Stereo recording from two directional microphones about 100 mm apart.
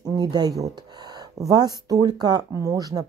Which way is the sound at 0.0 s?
45° right (ahead or behind).